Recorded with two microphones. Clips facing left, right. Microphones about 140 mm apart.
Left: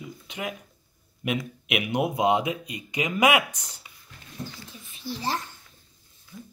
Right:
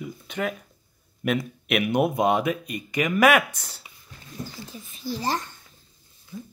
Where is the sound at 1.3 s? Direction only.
50° right (ahead or behind).